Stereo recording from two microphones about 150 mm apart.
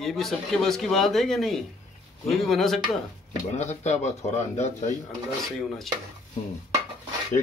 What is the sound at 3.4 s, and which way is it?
Speech, 50° left (ahead or behind).